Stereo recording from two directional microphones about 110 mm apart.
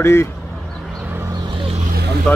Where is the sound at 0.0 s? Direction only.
25° left (ahead or behind).